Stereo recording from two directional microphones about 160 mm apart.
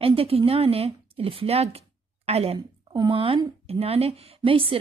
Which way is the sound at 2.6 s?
25° right (ahead or behind).